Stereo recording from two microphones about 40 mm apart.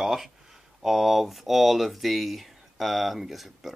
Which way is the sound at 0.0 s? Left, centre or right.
Centre.